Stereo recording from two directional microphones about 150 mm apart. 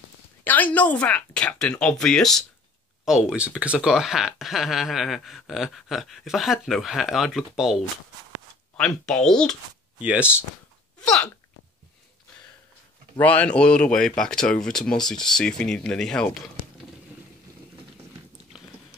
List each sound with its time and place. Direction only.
0.4 s a woman's voice: 10° left (ahead or behind)
9.9 s speech: 10° right (ahead or behind)
11.0 s speech: 5° left (ahead or behind)
13.2 s a woman's voice: 10° left (ahead or behind)